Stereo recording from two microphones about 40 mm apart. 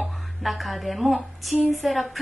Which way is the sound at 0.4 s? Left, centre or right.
Centre.